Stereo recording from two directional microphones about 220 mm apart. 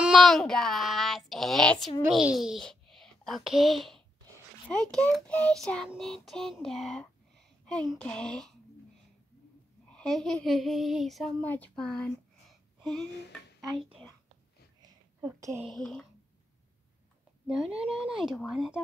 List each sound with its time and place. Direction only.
0.0 s child singing: centre (ahead or behind)
2.2 s a child's voice: centre (ahead or behind)
4.9 s child singing: 5° left (ahead or behind)
9.8 s speech: 5° left (ahead or behind)
13.7 s a child's voice: 25° right (ahead or behind)
14.8 s a sound: 15° right (ahead or behind)
15.6 s child singing: centre (ahead or behind)
17.5 s child singing: 5° right (ahead or behind)